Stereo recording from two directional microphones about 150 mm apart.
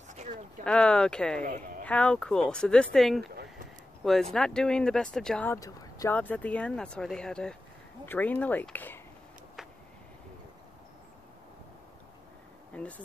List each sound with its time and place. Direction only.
0.7 s speech: 5° left (ahead or behind)
1.4 s a woman's voice: 70° right (ahead or behind)
1.9 s speech: 10° left (ahead or behind)
5.5 s speech: 25° left (ahead or behind)
6.1 s speech: 10° left (ahead or behind)
12.7 s speech: 10° left (ahead or behind)